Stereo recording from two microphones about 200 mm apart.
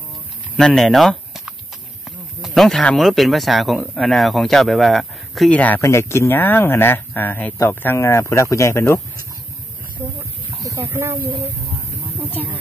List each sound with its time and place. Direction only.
0.6 s speech: centre (ahead or behind)
10.6 s speech: 15° right (ahead or behind)